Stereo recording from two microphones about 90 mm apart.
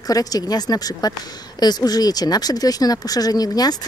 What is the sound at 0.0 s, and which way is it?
Speech, 45° left (ahead or behind).